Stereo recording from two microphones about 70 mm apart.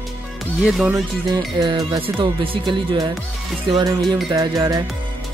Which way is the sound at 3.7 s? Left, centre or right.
Right.